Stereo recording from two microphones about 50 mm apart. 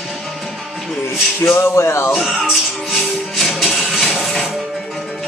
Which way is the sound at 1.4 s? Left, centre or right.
Left.